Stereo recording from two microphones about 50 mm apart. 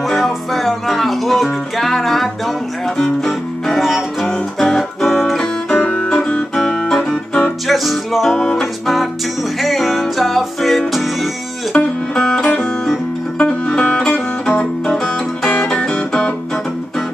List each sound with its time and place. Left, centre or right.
0.2 s music: centre
5.7 s music: left
6.5 s music: centre
7.6 s music: centre
8.3 s music: centre
8.5 s music: centre
11.7 s music: centre
15.7 s music: centre